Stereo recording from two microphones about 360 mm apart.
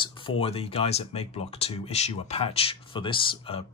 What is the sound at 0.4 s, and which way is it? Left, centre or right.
Speech, centre.